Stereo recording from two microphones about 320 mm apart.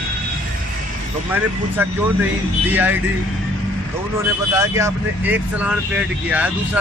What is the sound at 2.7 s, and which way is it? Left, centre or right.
Speech, centre.